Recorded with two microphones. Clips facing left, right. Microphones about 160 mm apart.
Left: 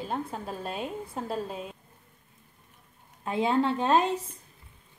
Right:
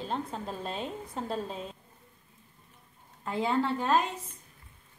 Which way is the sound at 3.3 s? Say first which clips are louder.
Left 3 dB; 20° left (ahead or behind).